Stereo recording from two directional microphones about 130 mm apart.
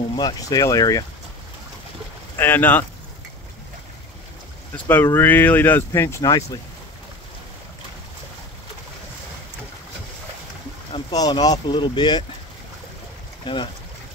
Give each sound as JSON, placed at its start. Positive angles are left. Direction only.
{"t": 0.1, "sound": "speech", "side_deg": 30}
{"t": 2.3, "sound": "speech", "side_deg": 15}
{"t": 4.8, "sound": "speech", "side_deg": 15}
{"t": 11.1, "sound": "speech", "side_deg": 30}